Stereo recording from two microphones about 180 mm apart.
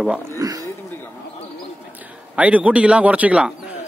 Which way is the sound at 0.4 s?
20° right (ahead or behind).